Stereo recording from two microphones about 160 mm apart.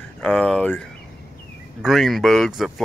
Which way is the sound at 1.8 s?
Centre (ahead or behind).